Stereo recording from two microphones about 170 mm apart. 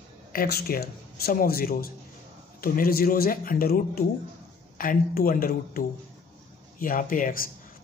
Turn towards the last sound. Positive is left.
turn(degrees=50)  # may be behind; listen again after turning